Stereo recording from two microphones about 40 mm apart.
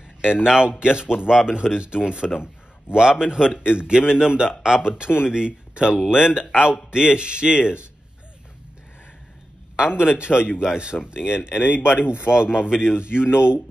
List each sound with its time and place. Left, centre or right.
0.2 s speech: centre
9.8 s speech: right
11.8 s a man's voice: left
12.3 s speech: right
13.1 s a sound: left